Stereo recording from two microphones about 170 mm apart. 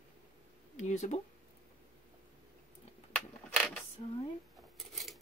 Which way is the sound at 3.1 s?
Centre (ahead or behind).